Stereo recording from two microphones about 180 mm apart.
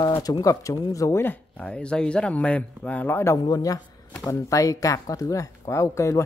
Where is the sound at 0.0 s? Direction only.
25° left (ahead or behind).